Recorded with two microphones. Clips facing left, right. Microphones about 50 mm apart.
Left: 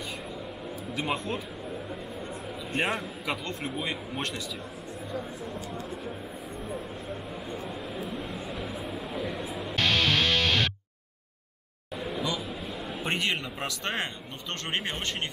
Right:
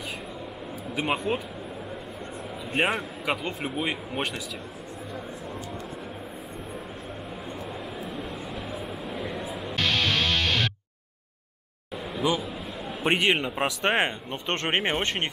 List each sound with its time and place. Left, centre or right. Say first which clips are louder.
0.9 s speech: right 4 dB; centre
2.7 s a man's voice: right 4 dB; centre
8.2 s music: even; centre
13.0 s speech: right 7 dB; right